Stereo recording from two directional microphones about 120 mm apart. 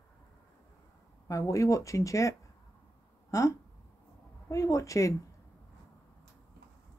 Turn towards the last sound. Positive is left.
turn(degrees=25)  # may be behind; listen again after turning